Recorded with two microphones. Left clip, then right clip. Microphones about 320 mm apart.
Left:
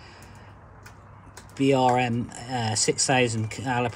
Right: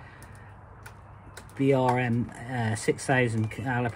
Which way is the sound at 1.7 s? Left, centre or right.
Centre.